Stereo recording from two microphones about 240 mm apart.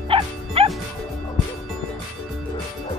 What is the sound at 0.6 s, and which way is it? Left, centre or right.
Music, right.